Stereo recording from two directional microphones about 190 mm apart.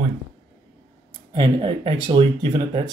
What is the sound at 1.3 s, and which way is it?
Speech, 25° right (ahead or behind).